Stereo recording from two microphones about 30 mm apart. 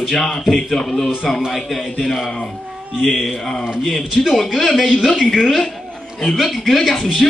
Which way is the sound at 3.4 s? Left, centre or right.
Centre.